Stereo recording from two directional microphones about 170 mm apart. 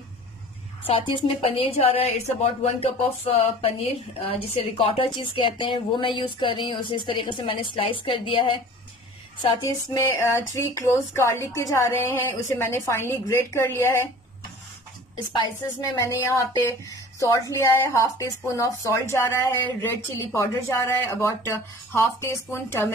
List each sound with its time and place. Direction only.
0.8 s a woman's voice: 30° left (ahead or behind)
9.7 s speech: 20° left (ahead or behind)
15.3 s a woman's voice: 25° left (ahead or behind)